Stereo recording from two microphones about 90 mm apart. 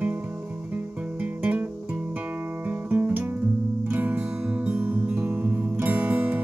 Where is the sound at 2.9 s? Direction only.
20° right (ahead or behind).